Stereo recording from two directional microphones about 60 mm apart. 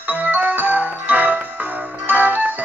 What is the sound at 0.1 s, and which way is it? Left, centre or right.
Music, right.